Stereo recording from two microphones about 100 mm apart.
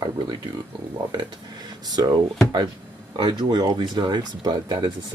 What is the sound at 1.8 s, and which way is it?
Speech, 45° right (ahead or behind).